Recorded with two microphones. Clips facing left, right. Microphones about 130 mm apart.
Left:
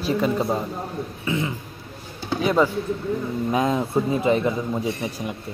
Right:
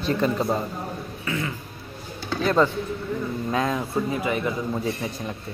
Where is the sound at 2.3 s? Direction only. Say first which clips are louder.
Left 1 dB; 10° left (ahead or behind).